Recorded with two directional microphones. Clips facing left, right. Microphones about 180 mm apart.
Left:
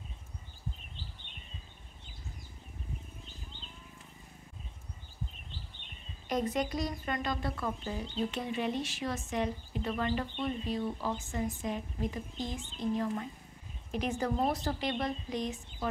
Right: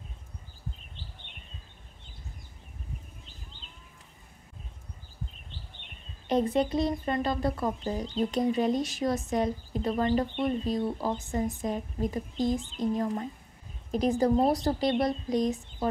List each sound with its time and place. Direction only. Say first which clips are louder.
6.2 s speech: right 6 dB; 30° right (ahead or behind)